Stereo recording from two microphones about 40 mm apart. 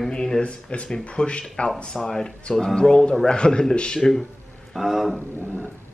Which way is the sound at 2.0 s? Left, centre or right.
Centre.